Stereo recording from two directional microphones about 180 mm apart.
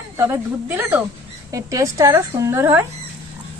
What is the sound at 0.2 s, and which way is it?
A woman's voice, 15° right (ahead or behind).